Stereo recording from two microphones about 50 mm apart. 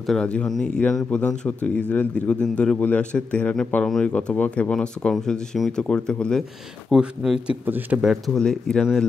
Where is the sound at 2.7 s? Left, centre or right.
Left.